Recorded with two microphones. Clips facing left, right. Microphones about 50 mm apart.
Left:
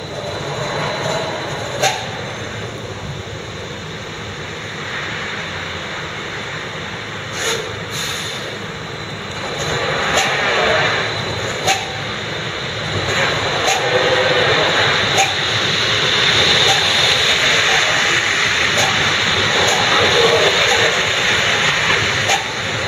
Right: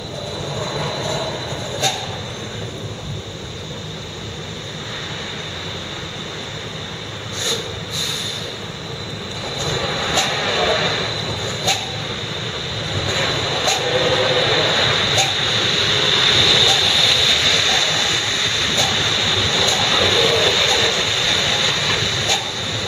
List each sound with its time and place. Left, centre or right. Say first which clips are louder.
0.7 s vehicle: left 4 dB; left
9.6 s vehicle: left 3 dB; left
12.9 s vehicle: left 4 dB; left